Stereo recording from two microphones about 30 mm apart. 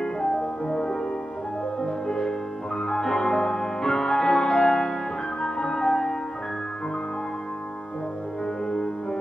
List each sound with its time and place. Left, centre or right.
0.0 s music: left
2.0 s music: left
8.6 s music: left